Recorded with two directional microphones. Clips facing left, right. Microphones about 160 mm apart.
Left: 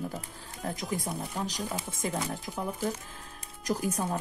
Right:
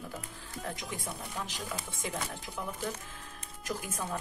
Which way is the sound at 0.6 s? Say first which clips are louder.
Left 7 dB; 40° left (ahead or behind).